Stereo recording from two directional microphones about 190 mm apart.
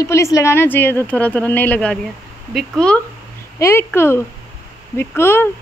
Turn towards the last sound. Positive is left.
turn(degrees=10)  # may be behind; listen again after turning